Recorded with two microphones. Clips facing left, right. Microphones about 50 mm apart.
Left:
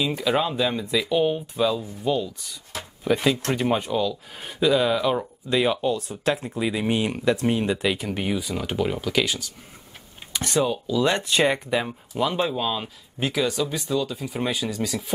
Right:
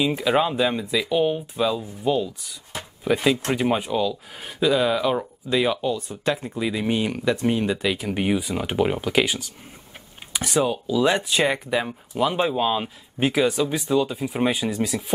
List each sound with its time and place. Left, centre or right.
0.0 s speech: centre
8.1 s speech: centre